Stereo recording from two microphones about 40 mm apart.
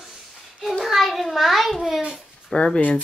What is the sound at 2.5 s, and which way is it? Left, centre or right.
Speech, centre.